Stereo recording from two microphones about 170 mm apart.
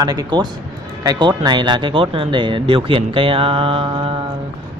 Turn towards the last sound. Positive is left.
turn(degrees=-30)  # may be behind; listen again after turning